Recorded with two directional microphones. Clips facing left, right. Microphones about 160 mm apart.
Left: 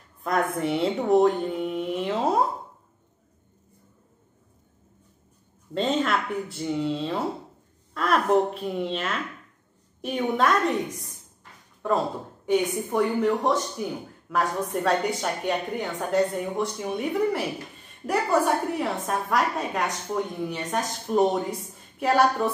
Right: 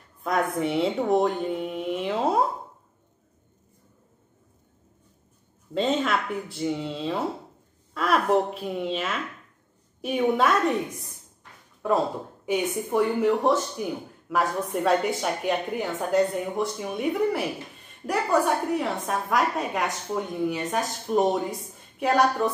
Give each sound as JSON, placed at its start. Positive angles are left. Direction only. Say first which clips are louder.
{"t": 0.2, "sound": "a woman's voice", "louder": "even", "side_deg": 0}
{"t": 5.8, "sound": "a woman's voice", "louder": "even", "side_deg": 0}
{"t": 12.4, "sound": "a woman's voice", "louder": "left 2 dB", "side_deg": -10}